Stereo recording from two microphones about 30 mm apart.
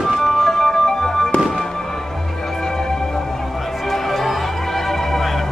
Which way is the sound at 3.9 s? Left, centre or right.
Centre.